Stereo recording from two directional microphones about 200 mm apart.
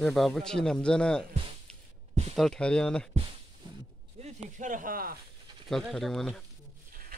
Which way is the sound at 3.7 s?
30° right (ahead or behind).